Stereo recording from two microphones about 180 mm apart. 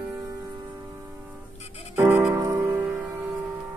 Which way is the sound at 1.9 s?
10° right (ahead or behind).